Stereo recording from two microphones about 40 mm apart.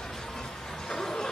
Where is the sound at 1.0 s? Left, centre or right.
Centre.